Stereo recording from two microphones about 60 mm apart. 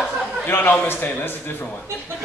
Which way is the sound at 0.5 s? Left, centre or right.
Left.